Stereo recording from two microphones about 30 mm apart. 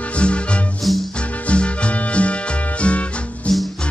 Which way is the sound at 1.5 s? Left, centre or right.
Left.